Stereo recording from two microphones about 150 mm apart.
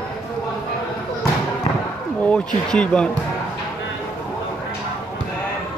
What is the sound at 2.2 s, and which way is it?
Speech, 5° left (ahead or behind).